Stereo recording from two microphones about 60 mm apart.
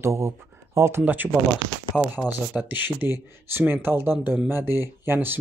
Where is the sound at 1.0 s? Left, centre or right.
Right.